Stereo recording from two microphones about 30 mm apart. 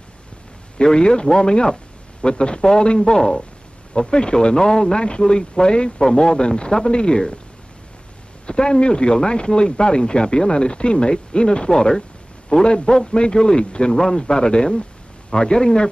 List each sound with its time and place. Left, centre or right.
0.9 s speech: left
8.5 s speech: left
11.7 s a man's voice: left